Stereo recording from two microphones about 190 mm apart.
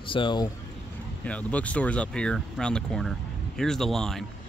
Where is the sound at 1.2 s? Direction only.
5° left (ahead or behind).